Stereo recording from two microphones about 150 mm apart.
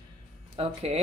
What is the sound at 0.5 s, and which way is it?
Speech, 45° right (ahead or behind).